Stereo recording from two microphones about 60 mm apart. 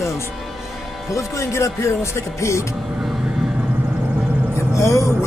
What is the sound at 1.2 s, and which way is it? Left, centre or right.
Speech, left.